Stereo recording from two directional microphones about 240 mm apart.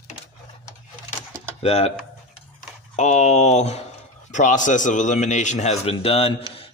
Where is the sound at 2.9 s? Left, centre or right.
Left.